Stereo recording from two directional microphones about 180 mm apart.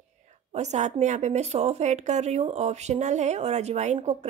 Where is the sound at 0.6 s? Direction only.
40° right (ahead or behind).